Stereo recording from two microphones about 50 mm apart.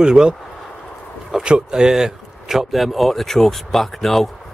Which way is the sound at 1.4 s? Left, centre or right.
Centre.